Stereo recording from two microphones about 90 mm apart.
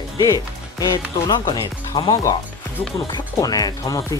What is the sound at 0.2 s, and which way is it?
Speech, 40° left (ahead or behind).